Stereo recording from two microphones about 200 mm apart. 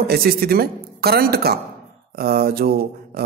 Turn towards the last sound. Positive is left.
turn(degrees=-50)  # may be behind; listen again after turning